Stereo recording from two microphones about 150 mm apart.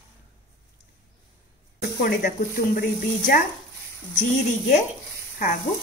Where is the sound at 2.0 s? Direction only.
70° left (ahead or behind).